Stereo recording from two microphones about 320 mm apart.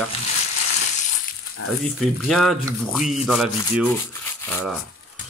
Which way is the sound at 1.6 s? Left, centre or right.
Left.